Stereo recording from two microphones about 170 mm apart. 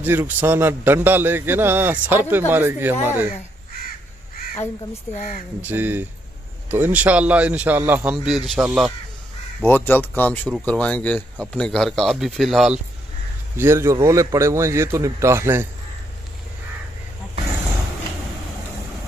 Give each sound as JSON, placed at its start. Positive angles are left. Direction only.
{"t": 0.0, "sound": "a man's voice", "side_deg": -10}
{"t": 5.1, "sound": "speech", "side_deg": 50}
{"t": 5.6, "sound": "a man's voice", "side_deg": -10}
{"t": 9.6, "sound": "speech", "side_deg": 10}
{"t": 13.6, "sound": "a man's voice", "side_deg": -15}